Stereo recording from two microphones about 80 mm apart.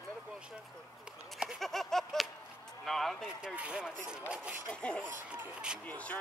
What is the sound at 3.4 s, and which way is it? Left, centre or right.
Speech, centre.